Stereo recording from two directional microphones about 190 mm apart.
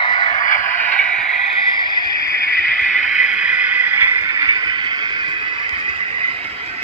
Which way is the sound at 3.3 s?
5° right (ahead or behind).